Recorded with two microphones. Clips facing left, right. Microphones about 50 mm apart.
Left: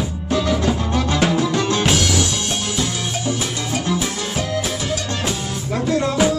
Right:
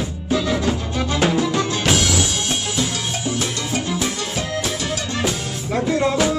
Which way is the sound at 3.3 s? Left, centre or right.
Centre.